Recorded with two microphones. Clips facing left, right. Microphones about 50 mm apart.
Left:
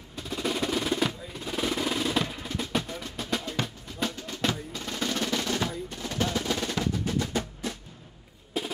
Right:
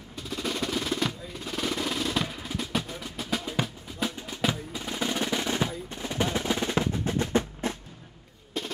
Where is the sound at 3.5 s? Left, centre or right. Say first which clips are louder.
Right 2 dB; centre.